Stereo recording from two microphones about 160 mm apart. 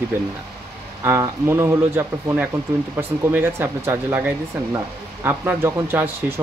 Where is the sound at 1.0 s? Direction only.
15° right (ahead or behind).